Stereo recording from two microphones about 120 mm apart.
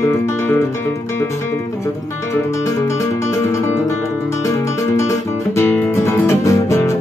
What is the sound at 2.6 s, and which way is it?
Music, 25° left (ahead or behind).